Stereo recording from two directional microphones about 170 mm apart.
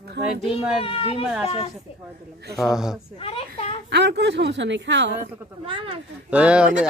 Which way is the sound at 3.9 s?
80° right.